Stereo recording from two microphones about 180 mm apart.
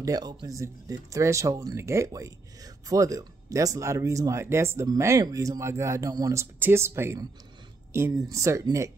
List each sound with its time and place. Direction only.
0.0 s speech: 20° right (ahead or behind)